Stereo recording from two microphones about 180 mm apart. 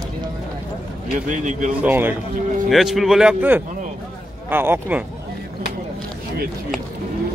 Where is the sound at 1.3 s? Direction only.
45° right (ahead or behind).